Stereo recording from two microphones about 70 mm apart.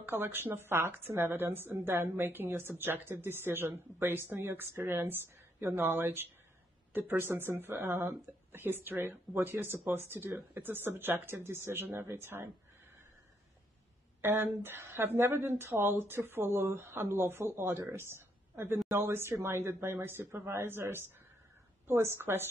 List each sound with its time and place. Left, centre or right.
0.0 s a woman's voice: right
8.5 s a woman's voice: right
14.2 s a woman's voice: right